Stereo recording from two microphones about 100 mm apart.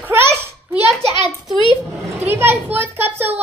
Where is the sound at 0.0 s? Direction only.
20° right (ahead or behind).